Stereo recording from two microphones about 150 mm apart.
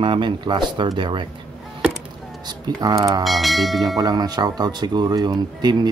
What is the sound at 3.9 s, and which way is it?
Speech, 25° right (ahead or behind).